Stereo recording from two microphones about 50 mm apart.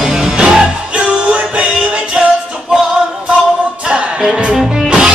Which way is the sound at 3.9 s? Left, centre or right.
Centre.